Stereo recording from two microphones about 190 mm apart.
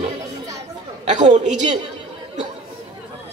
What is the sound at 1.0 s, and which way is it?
Speech, 40° right (ahead or behind).